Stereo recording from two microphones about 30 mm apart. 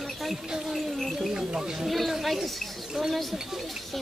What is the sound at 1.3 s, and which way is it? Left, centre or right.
Speech, right.